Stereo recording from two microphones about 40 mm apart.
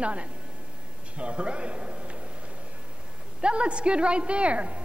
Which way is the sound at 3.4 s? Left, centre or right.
Right.